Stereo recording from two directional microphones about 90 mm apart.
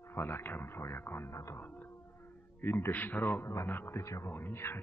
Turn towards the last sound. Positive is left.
turn(degrees=25)  # may be behind; listen again after turning